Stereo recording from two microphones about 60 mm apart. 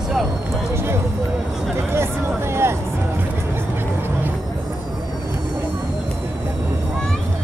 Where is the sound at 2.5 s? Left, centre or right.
Right.